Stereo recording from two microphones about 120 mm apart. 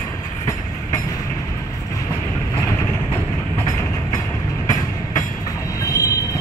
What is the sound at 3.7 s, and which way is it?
Train, 30° left (ahead or behind).